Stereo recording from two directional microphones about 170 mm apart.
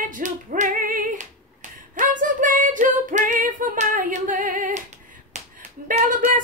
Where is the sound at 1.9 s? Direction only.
50° right (ahead or behind).